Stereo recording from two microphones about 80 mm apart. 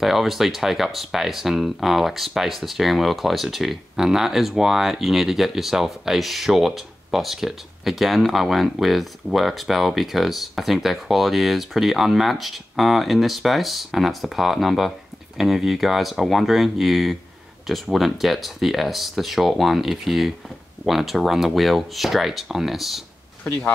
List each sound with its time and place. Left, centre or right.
0.0 s speech: centre
23.4 s speech: left